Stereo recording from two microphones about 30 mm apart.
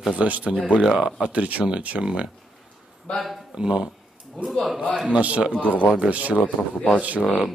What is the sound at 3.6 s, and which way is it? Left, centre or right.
Speech, right.